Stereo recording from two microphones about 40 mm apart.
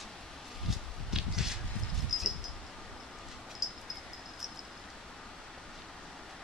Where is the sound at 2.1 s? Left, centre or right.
Centre.